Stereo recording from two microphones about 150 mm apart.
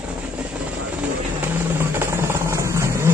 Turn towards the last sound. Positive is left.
turn(degrees=-20)  # may be behind; listen again after turning